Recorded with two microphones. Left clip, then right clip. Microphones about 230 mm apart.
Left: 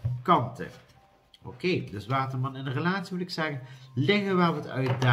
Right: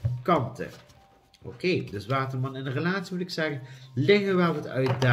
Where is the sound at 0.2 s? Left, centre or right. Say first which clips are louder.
Left 1 dB; centre.